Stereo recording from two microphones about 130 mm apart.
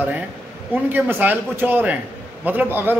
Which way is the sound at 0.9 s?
15° right (ahead or behind).